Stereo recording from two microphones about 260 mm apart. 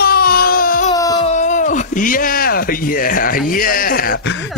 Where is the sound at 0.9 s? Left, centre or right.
Centre.